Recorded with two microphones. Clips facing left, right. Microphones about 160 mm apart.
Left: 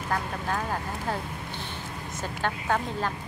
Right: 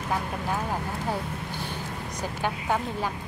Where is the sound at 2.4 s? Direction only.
10° right (ahead or behind).